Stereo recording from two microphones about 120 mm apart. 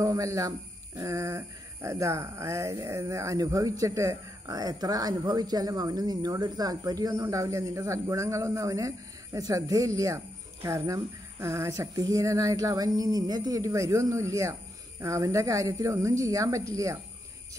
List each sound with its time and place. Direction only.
0.0 s speech: 25° right (ahead or behind)